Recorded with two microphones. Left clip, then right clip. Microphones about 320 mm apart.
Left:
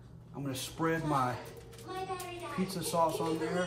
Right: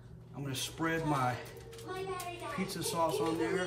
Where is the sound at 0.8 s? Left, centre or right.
Centre.